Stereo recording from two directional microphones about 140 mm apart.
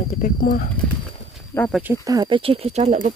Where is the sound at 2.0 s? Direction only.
30° right (ahead or behind); by 3.1 s 55° right (ahead or behind).